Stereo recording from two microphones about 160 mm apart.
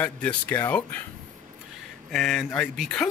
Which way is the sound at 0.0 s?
10° left (ahead or behind).